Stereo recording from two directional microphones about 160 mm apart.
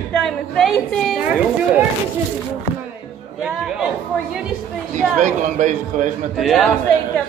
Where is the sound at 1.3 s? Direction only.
10° right (ahead or behind).